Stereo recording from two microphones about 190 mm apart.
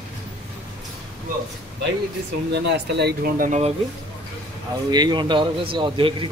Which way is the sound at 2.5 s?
60° right (ahead or behind).